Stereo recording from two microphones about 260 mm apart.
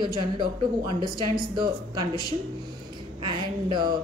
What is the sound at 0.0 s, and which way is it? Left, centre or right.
A woman's voice, centre.